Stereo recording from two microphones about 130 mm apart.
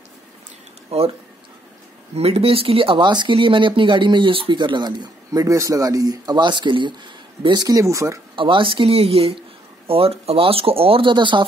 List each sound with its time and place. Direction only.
0.8 s speech: 45° right (ahead or behind)
2.1 s speech: 50° right (ahead or behind); by 8.2 s 25° right (ahead or behind)
8.4 s speech: 40° right (ahead or behind)